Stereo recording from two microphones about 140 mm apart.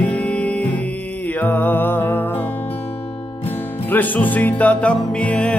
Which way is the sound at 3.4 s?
15° left (ahead or behind).